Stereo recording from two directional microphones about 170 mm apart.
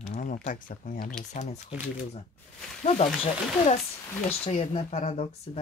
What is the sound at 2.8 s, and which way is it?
Speech, 40° left (ahead or behind).